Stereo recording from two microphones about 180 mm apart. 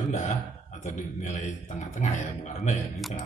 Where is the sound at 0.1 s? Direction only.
40° left (ahead or behind).